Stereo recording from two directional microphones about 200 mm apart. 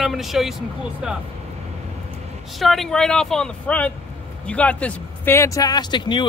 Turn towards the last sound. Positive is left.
turn(degrees=25)  # may be behind; listen again after turning